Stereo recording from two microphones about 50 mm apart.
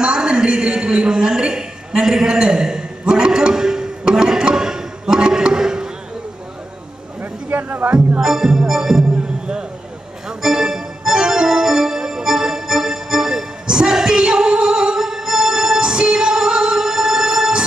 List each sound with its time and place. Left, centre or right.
0.0 s a sound: centre
7.2 s music: right
8.2 s music: centre
10.2 s music: centre